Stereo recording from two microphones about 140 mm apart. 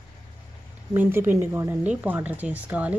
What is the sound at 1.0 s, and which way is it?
A woman's voice, 15° right (ahead or behind).